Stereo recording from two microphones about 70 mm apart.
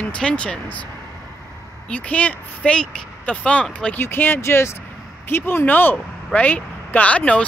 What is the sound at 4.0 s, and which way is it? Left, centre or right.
Speech, left.